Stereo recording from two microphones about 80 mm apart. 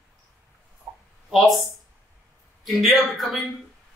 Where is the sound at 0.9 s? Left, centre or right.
Centre.